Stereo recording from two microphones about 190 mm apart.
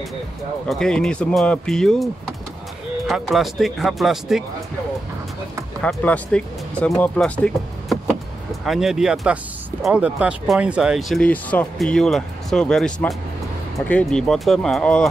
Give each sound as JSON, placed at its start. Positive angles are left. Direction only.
{"t": 0.7, "sound": "speech", "side_deg": 5}
{"t": 3.1, "sound": "speech", "side_deg": 0}
{"t": 5.8, "sound": "speech", "side_deg": 5}